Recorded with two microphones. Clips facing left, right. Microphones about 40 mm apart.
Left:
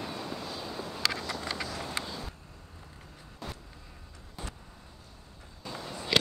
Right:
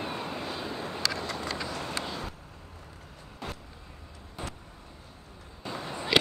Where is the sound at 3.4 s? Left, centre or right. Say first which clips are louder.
Right 3 dB; right.